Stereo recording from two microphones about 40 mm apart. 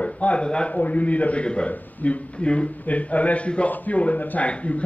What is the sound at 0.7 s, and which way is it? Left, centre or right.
Speech, left.